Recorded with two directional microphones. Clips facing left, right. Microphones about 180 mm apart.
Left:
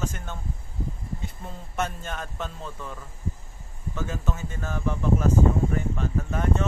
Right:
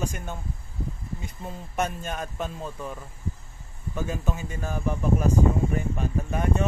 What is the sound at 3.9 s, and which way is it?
Speech, 15° right (ahead or behind).